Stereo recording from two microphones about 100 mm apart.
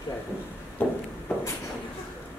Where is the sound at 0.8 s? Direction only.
15° left (ahead or behind).